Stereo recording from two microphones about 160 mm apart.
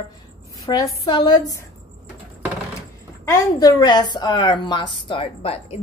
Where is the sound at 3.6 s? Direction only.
25° left (ahead or behind).